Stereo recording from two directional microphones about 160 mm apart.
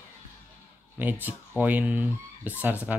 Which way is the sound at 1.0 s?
10° right (ahead or behind).